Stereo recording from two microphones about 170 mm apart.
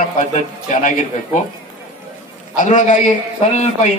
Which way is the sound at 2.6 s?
45° left (ahead or behind).